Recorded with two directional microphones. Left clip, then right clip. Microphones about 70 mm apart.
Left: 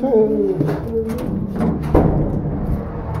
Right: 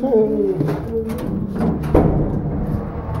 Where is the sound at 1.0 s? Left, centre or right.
Centre.